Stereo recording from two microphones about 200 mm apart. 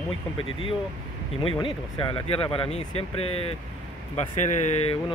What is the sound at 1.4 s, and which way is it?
Speech, 25° left (ahead or behind).